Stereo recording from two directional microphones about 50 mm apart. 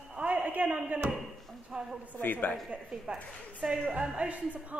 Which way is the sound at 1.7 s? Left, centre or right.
Centre.